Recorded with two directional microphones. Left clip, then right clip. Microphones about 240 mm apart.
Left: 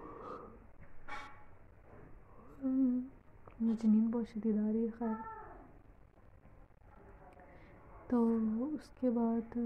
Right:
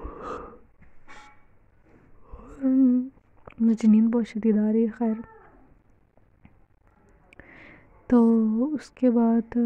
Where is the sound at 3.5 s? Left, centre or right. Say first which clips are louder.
Right 12 dB; right.